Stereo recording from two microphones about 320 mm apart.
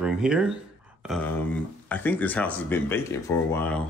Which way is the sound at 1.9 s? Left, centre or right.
Centre.